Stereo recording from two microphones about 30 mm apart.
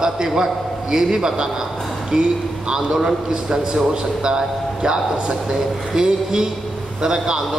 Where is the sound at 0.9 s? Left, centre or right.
Centre.